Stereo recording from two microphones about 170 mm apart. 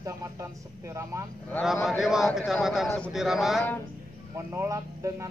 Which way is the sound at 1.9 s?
Centre (ahead or behind).